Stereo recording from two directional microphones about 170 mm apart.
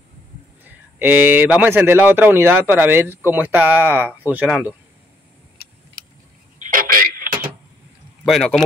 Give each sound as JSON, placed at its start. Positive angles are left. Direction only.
{"t": 0.7, "sound": "speech", "side_deg": -10}
{"t": 6.6, "sound": "telephone", "side_deg": -55}
{"t": 8.3, "sound": "speech", "side_deg": 5}